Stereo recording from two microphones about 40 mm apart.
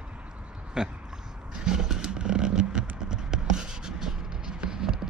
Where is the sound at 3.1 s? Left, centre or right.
Centre.